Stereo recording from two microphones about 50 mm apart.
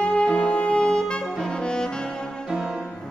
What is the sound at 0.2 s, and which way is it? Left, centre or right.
Saxophone, centre.